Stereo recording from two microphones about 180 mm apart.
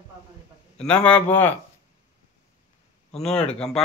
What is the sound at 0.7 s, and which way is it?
Speech, 5° left (ahead or behind).